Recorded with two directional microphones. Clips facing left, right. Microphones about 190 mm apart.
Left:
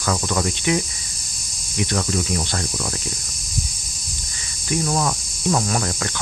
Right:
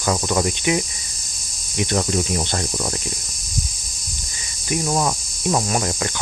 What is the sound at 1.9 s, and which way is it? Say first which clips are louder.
Cricket: right 3 dB; 25° right (ahead or behind).